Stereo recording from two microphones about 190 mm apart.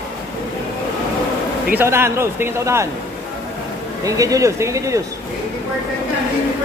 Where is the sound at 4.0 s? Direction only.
15° right (ahead or behind).